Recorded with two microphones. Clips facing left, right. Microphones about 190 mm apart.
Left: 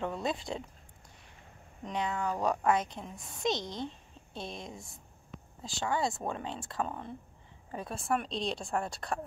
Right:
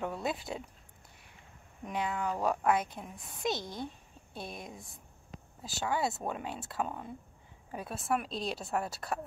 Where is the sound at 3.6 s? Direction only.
20° left (ahead or behind).